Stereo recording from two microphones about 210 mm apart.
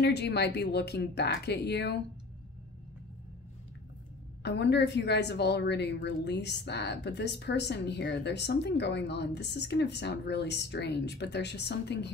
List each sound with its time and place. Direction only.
0.0 s a woman's voice: 55° left (ahead or behind)
4.4 s a woman's voice: 55° left (ahead or behind)